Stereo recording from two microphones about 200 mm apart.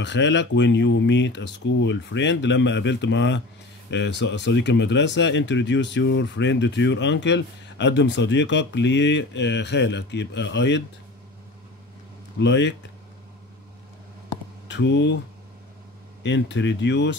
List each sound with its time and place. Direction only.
0.0 s speech: 60° left (ahead or behind)
12.4 s speech: 60° left (ahead or behind)
14.7 s speech: 65° left (ahead or behind)
16.2 s speech: 60° left (ahead or behind)